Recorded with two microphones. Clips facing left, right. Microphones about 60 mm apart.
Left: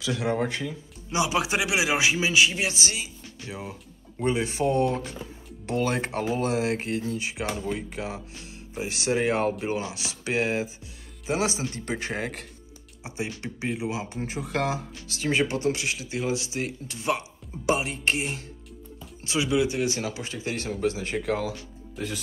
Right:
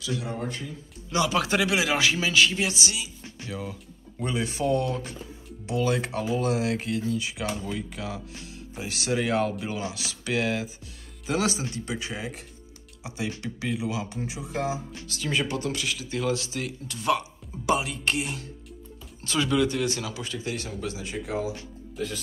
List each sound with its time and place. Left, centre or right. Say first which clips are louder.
0.2 s speech: left 6 dB; left
1.1 s a man's voice: right 1 dB; centre
2.7 s speech: even; left
11.7 s speech: left 2 dB; left
13.0 s speech: even; left
14.2 s speech: left 4 dB; left
15.1 s speech: left 3 dB; left
19.2 s a man's voice: even; centre; by 21.5 s left